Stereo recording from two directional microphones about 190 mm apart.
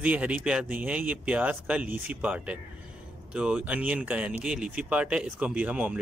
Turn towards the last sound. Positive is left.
turn(degrees=-5)  # may be behind; listen again after turning